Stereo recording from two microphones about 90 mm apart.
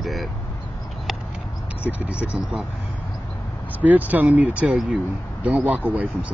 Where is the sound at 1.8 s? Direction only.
15° right (ahead or behind).